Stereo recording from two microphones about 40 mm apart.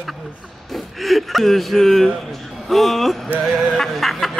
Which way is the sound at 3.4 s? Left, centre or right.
Centre.